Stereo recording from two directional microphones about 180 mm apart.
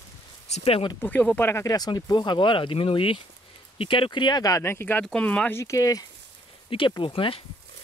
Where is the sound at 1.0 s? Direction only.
10° left (ahead or behind).